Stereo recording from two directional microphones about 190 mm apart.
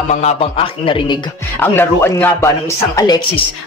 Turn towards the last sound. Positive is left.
turn(degrees=20)  # may be behind; listen again after turning